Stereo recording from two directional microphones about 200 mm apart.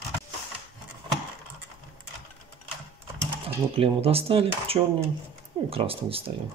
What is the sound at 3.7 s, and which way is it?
Speech, 30° right (ahead or behind).